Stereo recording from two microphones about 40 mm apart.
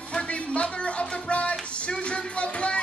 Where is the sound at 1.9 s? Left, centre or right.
Left.